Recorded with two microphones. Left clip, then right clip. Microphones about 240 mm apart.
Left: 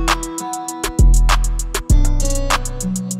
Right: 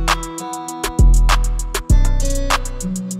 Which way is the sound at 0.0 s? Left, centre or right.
Centre.